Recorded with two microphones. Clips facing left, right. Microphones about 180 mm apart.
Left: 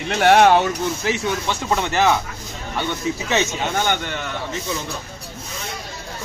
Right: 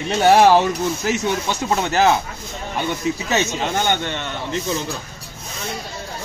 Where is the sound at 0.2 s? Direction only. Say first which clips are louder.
Right 1 dB; 35° right (ahead or behind).